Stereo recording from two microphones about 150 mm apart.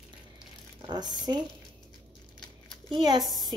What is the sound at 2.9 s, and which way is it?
Speech, 30° right (ahead or behind).